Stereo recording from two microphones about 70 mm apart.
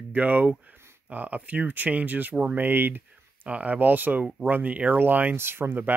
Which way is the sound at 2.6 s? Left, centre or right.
Right.